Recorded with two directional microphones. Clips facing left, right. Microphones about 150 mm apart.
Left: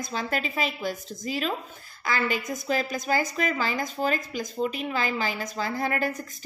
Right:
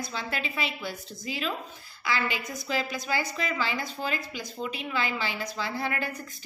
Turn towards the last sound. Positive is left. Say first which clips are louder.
# left 4 dB
turn(degrees=40)  # may be behind; listen again after turning